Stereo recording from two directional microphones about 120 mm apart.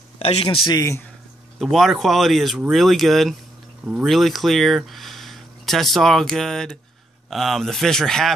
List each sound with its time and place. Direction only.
0.2 s speech: 55° left (ahead or behind)
0.7 s speech: 25° left (ahead or behind)
1.6 s speech: centre (ahead or behind)